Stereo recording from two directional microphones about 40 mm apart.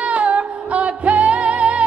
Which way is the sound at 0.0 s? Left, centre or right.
Right.